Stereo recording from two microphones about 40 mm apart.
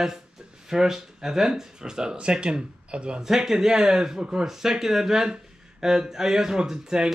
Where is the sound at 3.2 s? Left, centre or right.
Centre.